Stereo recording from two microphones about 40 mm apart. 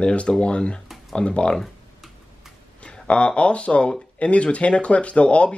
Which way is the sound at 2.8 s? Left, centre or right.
Left.